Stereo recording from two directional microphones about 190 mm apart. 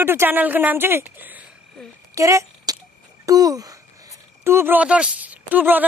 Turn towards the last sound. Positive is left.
turn(degrees=-10)  # may be behind; listen again after turning